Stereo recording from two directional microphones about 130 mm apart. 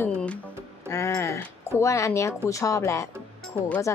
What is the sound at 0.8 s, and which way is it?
A woman's voice, 25° left (ahead or behind).